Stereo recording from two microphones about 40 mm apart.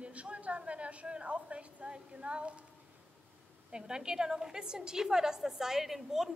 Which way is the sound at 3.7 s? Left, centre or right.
Centre.